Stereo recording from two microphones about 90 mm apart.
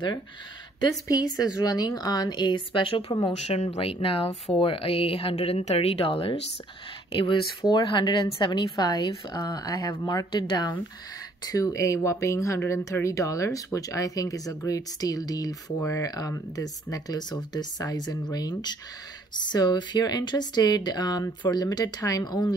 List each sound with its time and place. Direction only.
1.0 s a woman's voice: 45° left (ahead or behind); by 6.3 s 90° left
7.7 s a woman's voice: 55° left (ahead or behind)
11.4 s a woman's voice: 40° left (ahead or behind)